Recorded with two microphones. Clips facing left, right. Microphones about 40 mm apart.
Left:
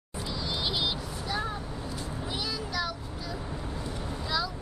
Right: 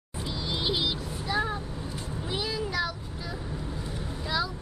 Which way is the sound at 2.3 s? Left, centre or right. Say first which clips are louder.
Right 4 dB; right.